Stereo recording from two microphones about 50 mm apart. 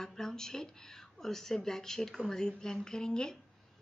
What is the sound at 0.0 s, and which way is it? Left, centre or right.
Speech, centre.